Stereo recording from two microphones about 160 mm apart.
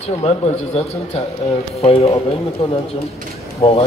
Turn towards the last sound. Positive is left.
turn(degrees=40)  # may be behind; listen again after turning